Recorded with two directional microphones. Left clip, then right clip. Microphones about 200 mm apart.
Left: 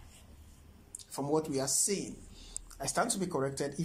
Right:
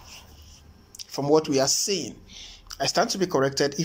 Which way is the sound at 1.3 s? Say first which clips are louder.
Right 11 dB; 5° right (ahead or behind).